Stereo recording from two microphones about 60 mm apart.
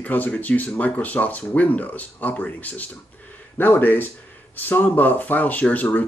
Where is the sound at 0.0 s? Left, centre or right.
Left.